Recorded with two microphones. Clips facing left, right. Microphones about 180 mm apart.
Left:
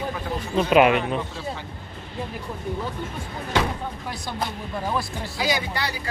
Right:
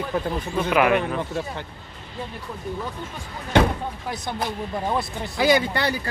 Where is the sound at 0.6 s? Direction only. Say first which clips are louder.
Left 3 dB; 20° left (ahead or behind).